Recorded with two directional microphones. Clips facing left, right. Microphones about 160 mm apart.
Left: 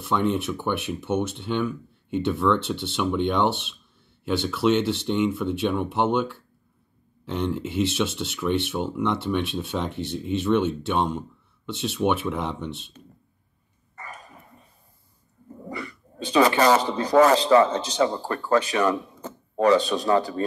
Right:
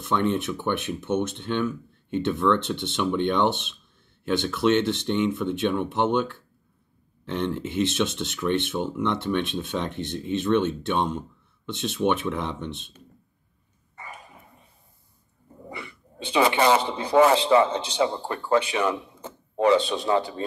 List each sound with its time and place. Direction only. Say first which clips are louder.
0.0 s speech: even; 10° left (ahead or behind)
13.9 s a sound: left 1 dB; 25° right (ahead or behind)
15.7 s speech: left 5 dB; 25° right (ahead or behind)